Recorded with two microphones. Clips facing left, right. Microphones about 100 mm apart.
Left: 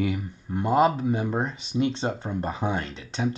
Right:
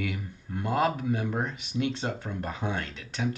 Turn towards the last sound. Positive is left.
turn(degrees=25)  # may be behind; listen again after turning